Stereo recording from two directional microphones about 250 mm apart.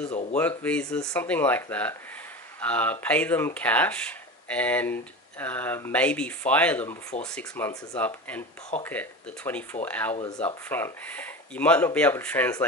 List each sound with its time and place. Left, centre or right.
0.1 s speech: left
0.4 s speech: centre
10.1 s speech: left
10.4 s speech: centre